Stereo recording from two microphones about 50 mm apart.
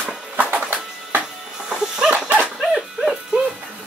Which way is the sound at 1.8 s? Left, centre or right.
Centre.